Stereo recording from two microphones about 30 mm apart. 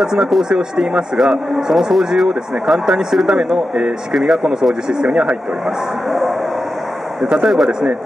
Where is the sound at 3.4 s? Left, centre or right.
Right.